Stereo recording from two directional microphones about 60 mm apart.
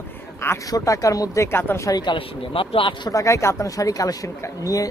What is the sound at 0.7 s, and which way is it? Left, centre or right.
Speech, left.